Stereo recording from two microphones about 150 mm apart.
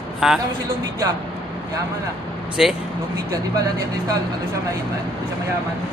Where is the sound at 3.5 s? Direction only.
25° right (ahead or behind).